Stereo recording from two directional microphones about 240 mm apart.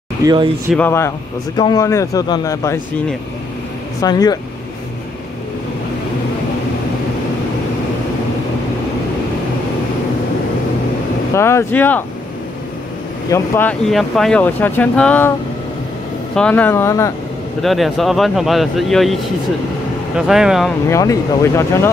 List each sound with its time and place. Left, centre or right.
0.2 s speech: centre
0.7 s speech: centre
11.3 s speech: centre
13.3 s speech: centre
16.3 s speech: centre
17.6 s speech: centre
20.2 s speech: centre
20.9 s speech: centre